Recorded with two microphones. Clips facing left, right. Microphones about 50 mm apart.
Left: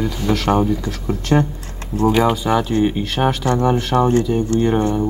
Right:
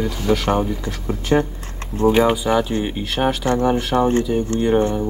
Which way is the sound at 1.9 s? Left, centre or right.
Right.